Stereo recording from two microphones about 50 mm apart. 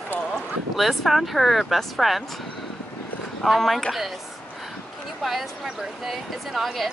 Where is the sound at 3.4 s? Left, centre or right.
Centre.